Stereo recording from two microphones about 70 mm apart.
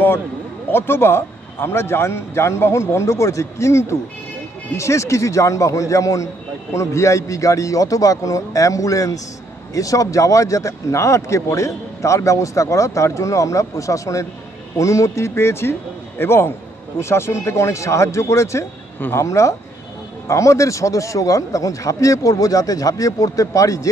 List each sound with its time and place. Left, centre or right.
0.7 s speech: left
18.9 s speech: left
19.2 s speech: left